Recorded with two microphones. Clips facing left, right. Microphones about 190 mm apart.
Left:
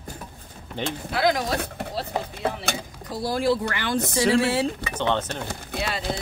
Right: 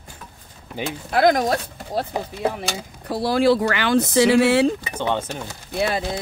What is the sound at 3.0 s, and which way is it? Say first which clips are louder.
Speech: right 6 dB; 70° right (ahead or behind).